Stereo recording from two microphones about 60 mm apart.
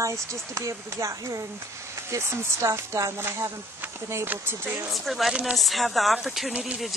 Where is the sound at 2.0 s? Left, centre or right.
Right.